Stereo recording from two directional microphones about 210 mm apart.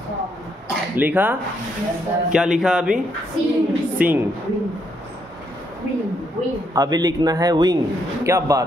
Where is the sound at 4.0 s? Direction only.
10° right (ahead or behind).